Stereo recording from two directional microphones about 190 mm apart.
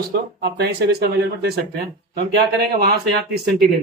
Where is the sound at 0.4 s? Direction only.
60° right (ahead or behind).